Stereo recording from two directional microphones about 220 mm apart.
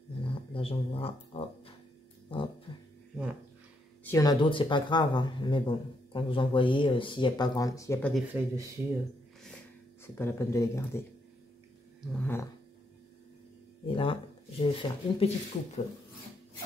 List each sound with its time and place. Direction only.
0.2 s speech: 25° left (ahead or behind)
2.7 s a sound: 25° left (ahead or behind)
4.0 s speech: 15° left (ahead or behind)
8.3 s speech: 10° right (ahead or behind)
10.1 s speech: 10° left (ahead or behind)
12.1 s speech: 10° left (ahead or behind)
13.8 s speech: 25° left (ahead or behind)